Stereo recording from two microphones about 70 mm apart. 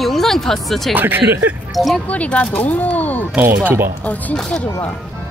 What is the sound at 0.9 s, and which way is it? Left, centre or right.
Speech, right.